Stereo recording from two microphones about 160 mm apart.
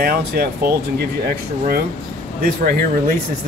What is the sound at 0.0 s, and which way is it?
Speech, 75° right (ahead or behind).